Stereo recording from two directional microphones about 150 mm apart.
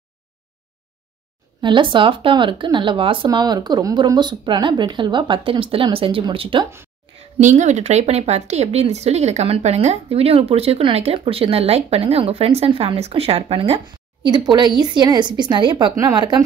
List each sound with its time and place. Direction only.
1.6 s a woman's voice: 35° right (ahead or behind)
7.5 s speech: 45° right (ahead or behind); by 16.4 s 30° right (ahead or behind)